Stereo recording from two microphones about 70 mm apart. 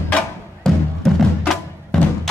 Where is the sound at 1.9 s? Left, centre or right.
Centre.